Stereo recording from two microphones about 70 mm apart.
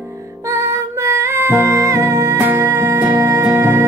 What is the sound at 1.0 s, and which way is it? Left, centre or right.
Music, right.